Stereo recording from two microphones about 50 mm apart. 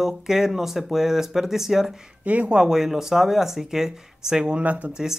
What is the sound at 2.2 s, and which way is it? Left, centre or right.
Speech, right.